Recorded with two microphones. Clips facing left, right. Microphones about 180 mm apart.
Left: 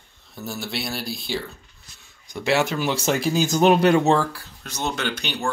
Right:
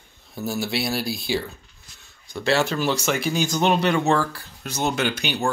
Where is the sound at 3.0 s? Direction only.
35° left (ahead or behind).